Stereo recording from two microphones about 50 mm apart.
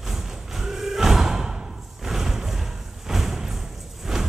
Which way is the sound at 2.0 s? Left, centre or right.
Centre.